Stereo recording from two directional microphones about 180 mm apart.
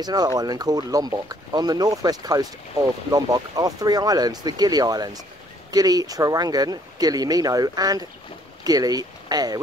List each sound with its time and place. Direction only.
0.0 s speech: 20° right (ahead or behind)